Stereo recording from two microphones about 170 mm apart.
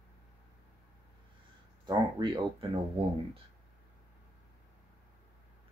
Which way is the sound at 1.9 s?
25° right (ahead or behind).